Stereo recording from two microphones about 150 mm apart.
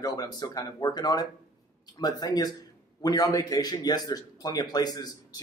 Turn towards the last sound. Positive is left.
turn(degrees=25)  # may be behind; listen again after turning